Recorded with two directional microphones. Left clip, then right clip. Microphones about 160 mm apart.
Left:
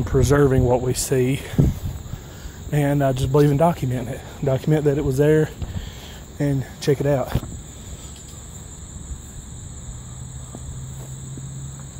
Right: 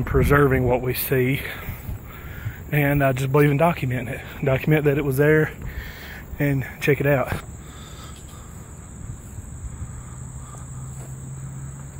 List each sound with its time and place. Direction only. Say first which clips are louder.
0.0 s speech: even; 20° left (ahead or behind)
0.7 s speech: left 2 dB; 35° left (ahead or behind); by 1.6 s 20° left (ahead or behind)
2.7 s speech: even; 20° left (ahead or behind)
5.1 s speech: even; 30° left (ahead or behind)
7.1 s speech: right 1 dB; 5° left (ahead or behind)